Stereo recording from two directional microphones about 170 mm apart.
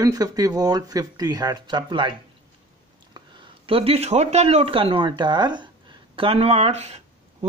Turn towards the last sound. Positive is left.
turn(degrees=-40)  # may be behind; listen again after turning